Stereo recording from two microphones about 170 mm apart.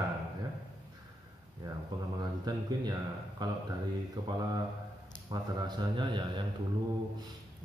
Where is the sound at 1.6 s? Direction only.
25° right (ahead or behind).